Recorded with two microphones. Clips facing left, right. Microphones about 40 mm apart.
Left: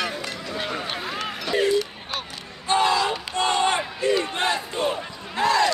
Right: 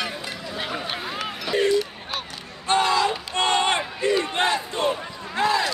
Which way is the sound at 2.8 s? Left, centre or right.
Centre.